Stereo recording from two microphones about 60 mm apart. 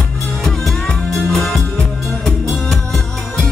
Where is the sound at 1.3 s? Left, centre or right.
Centre.